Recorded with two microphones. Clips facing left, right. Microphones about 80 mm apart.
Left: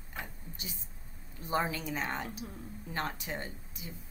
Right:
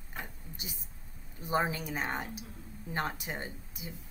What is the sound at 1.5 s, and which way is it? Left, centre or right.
A woman's voice, centre.